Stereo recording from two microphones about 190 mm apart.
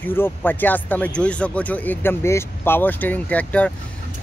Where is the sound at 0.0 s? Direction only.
10° left (ahead or behind).